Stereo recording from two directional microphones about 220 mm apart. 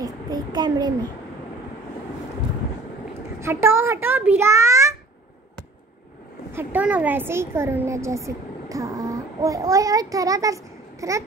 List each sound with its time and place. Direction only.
0.0 s a child's voice: 20° right (ahead or behind)
3.3 s a child's voice: 10° right (ahead or behind)
6.5 s a woman's voice: 5° right (ahead or behind)